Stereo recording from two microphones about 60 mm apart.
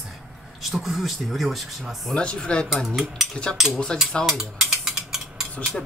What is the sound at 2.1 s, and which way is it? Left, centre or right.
Speech, centre.